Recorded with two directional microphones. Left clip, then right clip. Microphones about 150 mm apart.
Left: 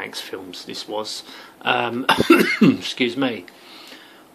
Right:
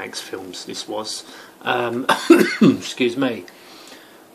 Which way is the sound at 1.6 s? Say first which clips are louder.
Even; 30° left (ahead or behind).